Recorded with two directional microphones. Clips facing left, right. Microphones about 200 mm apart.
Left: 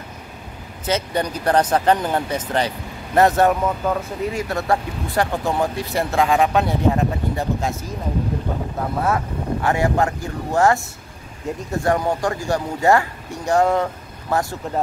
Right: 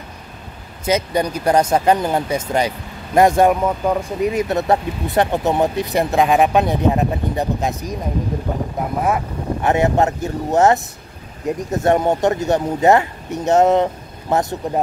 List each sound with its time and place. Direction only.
0.8 s speech: 10° right (ahead or behind)
9.0 s speech: 20° right (ahead or behind)